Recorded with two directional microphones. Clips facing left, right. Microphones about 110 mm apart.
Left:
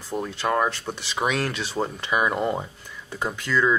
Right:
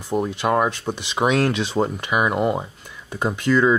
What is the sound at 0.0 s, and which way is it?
Speech, 15° right (ahead or behind).